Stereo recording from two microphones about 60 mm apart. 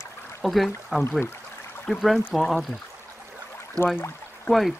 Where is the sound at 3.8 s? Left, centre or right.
Right.